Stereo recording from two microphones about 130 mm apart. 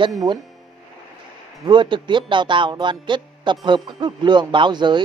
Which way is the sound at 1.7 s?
35° right (ahead or behind).